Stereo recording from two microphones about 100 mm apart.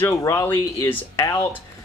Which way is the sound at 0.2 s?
30° left (ahead or behind).